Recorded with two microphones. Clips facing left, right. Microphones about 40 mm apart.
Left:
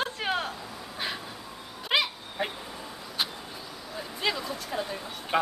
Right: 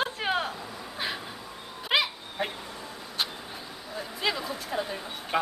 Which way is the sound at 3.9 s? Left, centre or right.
Centre.